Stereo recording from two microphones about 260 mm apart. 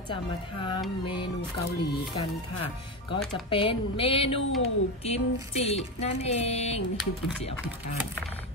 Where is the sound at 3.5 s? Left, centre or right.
Centre.